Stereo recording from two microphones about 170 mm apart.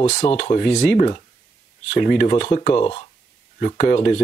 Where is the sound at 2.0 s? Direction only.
60° left (ahead or behind).